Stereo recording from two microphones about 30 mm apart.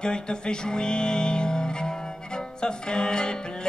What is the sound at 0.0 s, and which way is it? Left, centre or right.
Music, left.